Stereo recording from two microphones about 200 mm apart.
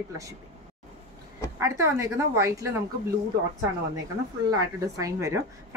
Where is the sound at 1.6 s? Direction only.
15° right (ahead or behind).